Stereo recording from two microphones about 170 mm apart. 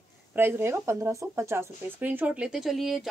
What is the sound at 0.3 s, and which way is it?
Speech, 10° right (ahead or behind).